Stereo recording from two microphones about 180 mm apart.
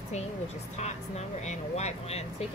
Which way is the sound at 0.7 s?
40° left (ahead or behind).